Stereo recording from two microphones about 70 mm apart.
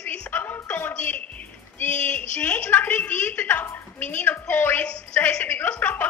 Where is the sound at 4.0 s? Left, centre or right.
Left.